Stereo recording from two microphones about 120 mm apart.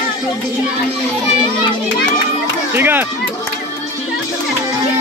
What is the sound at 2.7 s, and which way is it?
Speech, 15° right (ahead or behind).